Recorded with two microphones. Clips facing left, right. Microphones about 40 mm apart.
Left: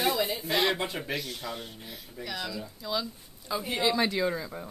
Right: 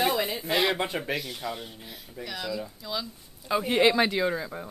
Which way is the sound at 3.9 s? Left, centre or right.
Right.